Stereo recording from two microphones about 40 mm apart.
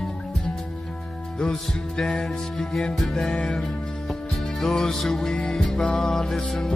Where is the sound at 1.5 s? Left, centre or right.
Centre.